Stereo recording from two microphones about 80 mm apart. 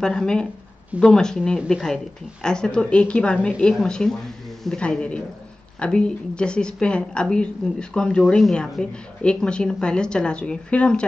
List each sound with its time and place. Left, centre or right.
0.0 s a woman's voice: centre